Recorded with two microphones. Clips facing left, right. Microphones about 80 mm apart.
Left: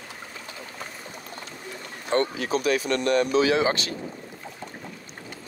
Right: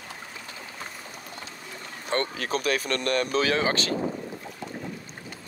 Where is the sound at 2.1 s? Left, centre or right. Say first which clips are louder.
Left 4 dB; right.